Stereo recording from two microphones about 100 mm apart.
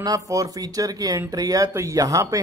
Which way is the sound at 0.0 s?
35° right (ahead or behind).